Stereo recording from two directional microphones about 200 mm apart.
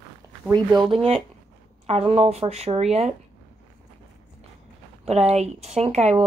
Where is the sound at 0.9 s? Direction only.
30° right (ahead or behind).